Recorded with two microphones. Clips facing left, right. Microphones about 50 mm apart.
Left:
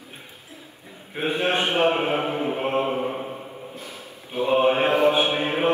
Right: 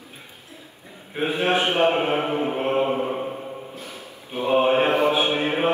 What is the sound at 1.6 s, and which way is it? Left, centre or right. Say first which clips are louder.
Speech: even; right.